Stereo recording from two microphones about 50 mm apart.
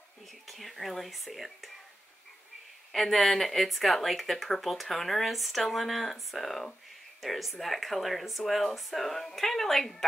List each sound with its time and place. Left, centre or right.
0.5 s speech: centre
2.9 s speech: centre